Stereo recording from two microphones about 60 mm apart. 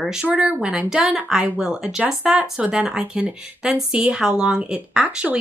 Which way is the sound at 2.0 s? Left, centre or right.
Right.